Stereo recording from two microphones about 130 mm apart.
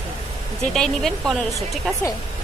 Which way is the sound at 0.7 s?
5° left (ahead or behind).